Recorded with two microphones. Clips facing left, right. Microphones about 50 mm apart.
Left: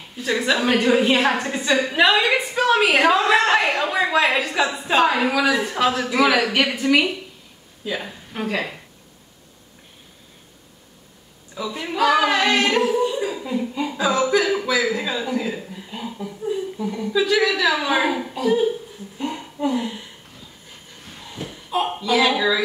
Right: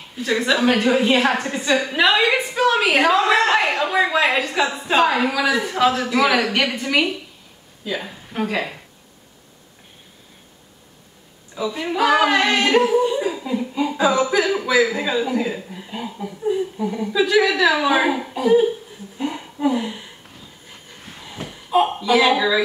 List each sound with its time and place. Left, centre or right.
0.2 s a woman's voice: centre
11.5 s speech: centre
13.0 s chuckle: centre
14.3 s speech: centre
19.1 s a sound: centre
21.2 s a sound: centre